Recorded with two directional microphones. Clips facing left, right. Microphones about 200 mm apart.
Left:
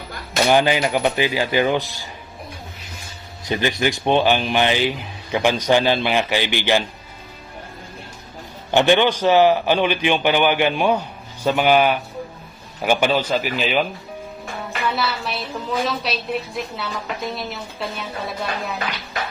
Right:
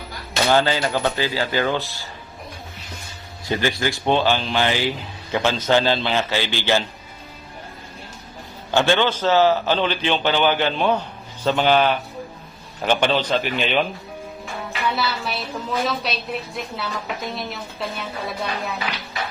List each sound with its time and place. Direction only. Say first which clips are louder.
0.5 s a man's voice: left 2 dB; 15° left (ahead or behind)
3.4 s a man's voice: left 1 dB; 20° left (ahead or behind)
8.7 s a man's voice: left 3 dB; 15° left (ahead or behind)
14.9 s a woman's voice: even; centre (ahead or behind)